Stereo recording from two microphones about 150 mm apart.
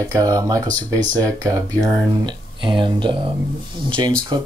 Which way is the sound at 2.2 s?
30° right (ahead or behind).